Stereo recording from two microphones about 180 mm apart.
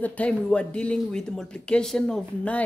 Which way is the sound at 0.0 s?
10° left (ahead or behind).